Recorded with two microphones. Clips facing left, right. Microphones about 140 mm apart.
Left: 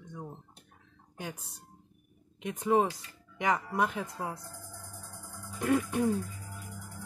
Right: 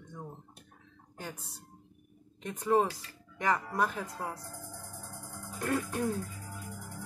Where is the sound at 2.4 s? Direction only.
15° left (ahead or behind).